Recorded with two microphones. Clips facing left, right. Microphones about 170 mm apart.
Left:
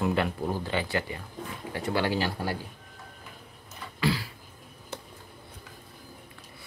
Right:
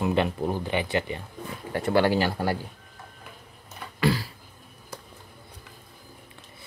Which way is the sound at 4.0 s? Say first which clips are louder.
Right 3 dB; 45° right (ahead or behind).